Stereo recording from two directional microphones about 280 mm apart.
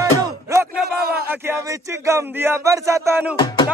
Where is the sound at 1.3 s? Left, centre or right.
Centre.